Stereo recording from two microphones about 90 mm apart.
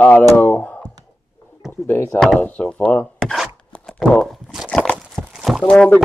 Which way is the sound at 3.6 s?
15° left (ahead or behind).